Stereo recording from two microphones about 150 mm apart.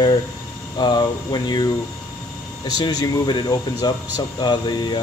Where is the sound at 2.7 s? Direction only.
25° left (ahead or behind).